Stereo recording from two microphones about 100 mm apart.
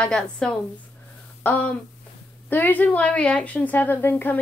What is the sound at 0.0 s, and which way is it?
A woman's voice, 10° left (ahead or behind).